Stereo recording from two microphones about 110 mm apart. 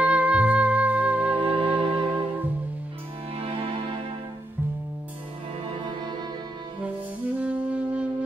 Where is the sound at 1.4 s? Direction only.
55° right (ahead or behind).